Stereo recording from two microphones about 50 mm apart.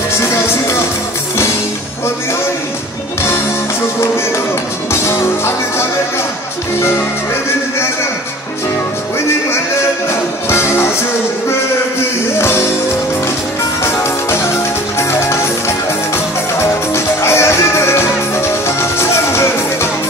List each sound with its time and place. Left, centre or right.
4.9 s music: left
10.5 s music: left
12.4 s music: left
15.0 s music: left
16.5 s music: left